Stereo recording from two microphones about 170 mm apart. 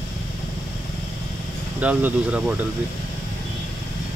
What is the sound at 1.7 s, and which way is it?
Speech, 10° right (ahead or behind).